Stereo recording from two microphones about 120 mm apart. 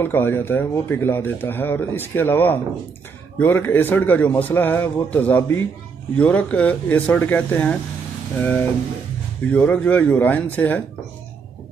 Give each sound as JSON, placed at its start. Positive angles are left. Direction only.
{"t": 0.0, "sound": "speech", "side_deg": 20}